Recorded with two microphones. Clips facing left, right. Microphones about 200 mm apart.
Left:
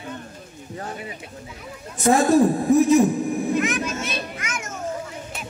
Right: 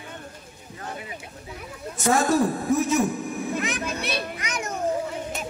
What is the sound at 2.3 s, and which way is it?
Speech, 35° left (ahead or behind).